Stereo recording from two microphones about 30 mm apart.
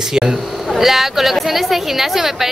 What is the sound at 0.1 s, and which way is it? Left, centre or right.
Speech, centre.